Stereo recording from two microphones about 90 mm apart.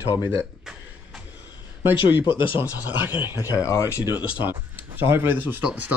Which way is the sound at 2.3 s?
65° left (ahead or behind).